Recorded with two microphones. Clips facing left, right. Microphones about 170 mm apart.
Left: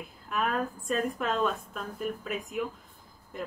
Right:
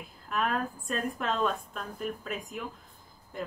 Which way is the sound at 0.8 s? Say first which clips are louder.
Left 4 dB; centre (ahead or behind).